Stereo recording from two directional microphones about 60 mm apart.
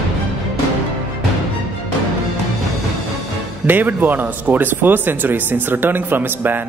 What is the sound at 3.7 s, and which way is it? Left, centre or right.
Speech, right.